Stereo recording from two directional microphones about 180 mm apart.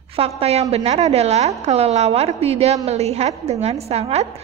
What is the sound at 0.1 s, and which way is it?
A woman's voice, 35° right (ahead or behind).